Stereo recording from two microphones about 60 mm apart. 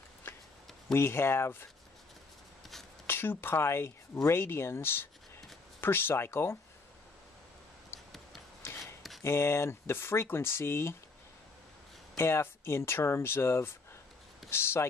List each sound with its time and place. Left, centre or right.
0.9 s speech: left
3.1 s speech: left
9.2 s speech: left
12.2 s speech: left